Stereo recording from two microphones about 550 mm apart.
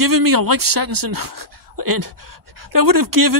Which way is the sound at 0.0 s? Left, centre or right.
Right.